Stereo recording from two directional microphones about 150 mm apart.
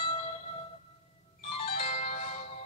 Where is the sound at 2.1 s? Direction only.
50° left (ahead or behind).